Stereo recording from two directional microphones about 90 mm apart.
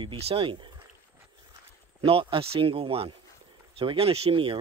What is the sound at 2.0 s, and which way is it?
Speech, 80° right.